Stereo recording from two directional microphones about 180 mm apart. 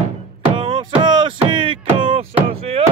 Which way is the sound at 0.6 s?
30° right (ahead or behind).